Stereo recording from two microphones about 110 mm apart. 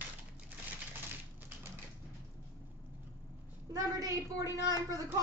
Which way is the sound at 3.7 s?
30° right (ahead or behind).